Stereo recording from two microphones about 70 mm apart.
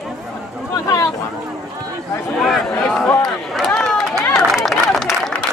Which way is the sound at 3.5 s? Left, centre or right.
Centre.